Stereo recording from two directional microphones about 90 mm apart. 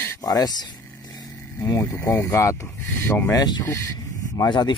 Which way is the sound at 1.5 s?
40° left (ahead or behind).